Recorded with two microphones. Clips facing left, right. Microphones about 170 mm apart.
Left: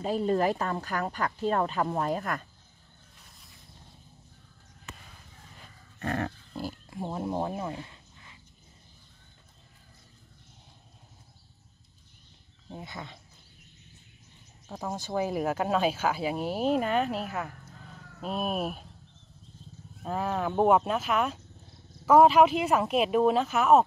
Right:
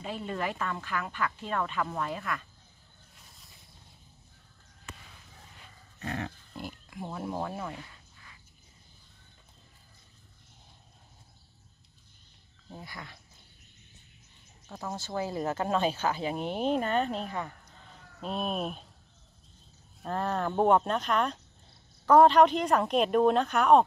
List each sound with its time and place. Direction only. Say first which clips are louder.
0.0 s speech: left 8 dB; 40° left (ahead or behind)
5.9 s dog: left 5 dB; 55° left (ahead or behind)
6.5 s speech: left 5 dB; 30° left (ahead or behind)
12.6 s speech: left 4 dB; 20° left (ahead or behind)
14.7 s speech: left 3 dB; 15° left (ahead or behind)
20.0 s speech: left 1 dB; 5° left (ahead or behind)